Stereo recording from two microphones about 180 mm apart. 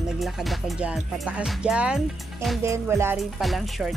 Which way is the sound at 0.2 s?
Centre (ahead or behind).